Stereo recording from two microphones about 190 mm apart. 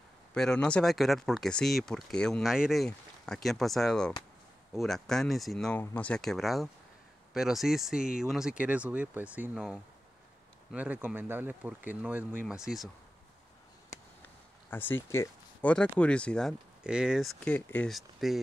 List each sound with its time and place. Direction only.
0.3 s speech: 5° left (ahead or behind)
14.7 s speech: 10° left (ahead or behind)